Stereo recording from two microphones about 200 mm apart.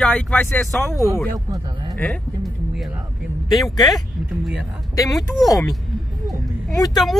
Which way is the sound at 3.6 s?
20° left (ahead or behind).